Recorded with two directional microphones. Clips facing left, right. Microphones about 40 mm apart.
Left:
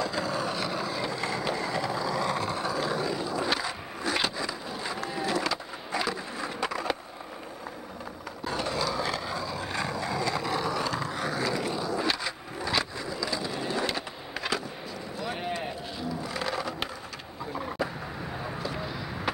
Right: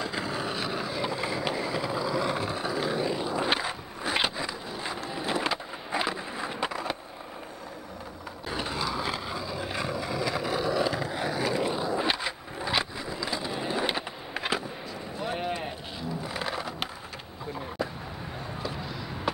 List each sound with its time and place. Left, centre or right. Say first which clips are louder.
0.0 s skateboard: left 2 dB; centre
1.5 s vehicle: even; centre
8.5 s vehicle: left 2 dB; centre
15.2 s run: right 2 dB; centre
16.3 s a sound: left 1 dB; centre